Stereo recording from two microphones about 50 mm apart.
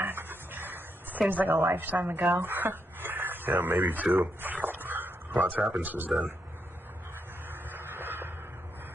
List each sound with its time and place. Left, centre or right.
0.0 s dog: right
1.3 s speech: right
1.6 s speech: right
1.9 s speech: right
7.7 s a sound: right